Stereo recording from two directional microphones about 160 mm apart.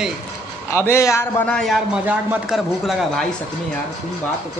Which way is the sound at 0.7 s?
15° left (ahead or behind).